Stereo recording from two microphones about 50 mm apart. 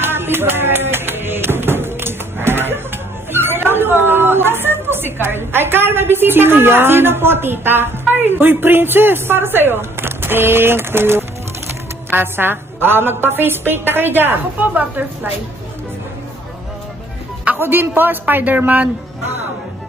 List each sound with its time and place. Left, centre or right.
0.0 s a woman's voice: right
17.6 s a man's voice: right